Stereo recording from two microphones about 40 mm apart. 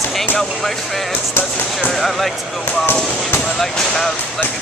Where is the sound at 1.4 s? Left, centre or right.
Left.